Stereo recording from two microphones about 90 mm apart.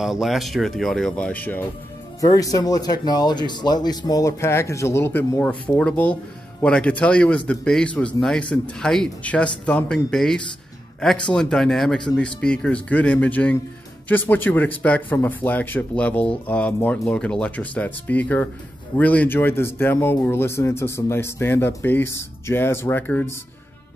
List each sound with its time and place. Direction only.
0.0 s speech: 5° right (ahead or behind); by 1.7 s 20° left (ahead or behind)
2.1 s speech: 40° left (ahead or behind); by 23.2 s 20° left (ahead or behind)